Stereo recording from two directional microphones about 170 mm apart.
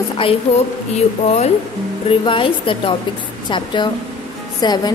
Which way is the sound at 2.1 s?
30° left (ahead or behind).